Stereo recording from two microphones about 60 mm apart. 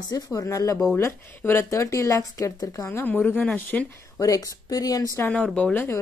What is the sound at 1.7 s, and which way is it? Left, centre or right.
A woman's voice, left.